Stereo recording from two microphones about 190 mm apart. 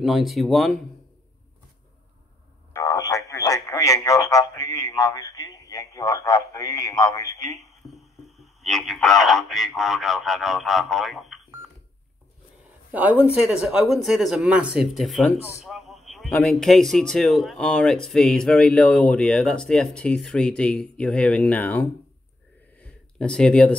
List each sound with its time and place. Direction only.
0.0 s speech: centre (ahead or behind)
2.7 s speech: 15° left (ahead or behind)
7.9 s speech: centre (ahead or behind)
12.9 s speech: 10° right (ahead or behind)
15.6 s a sound: centre (ahead or behind)
16.3 s speech: 5° left (ahead or behind)
22.8 s a sound: 5° left (ahead or behind)